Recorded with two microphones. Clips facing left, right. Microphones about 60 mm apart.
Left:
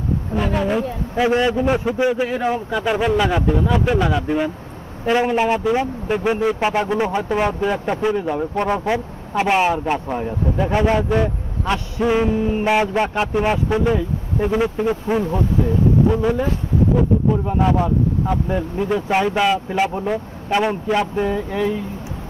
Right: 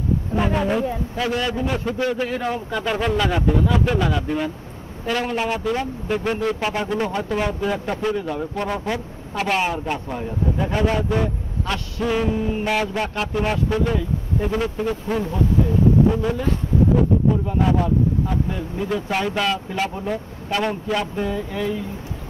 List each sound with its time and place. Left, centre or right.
0.4 s a woman's voice: centre
1.1 s a man's voice: left
17.5 s a man's voice: centre